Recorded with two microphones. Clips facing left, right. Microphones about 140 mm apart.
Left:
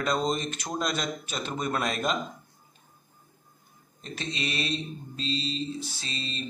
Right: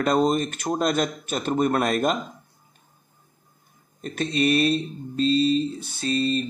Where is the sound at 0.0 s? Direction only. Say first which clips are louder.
Right 7 dB; 55° right (ahead or behind).